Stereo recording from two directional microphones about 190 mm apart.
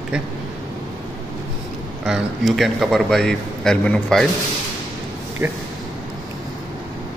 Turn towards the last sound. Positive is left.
turn(degrees=-10)  # may be behind; listen again after turning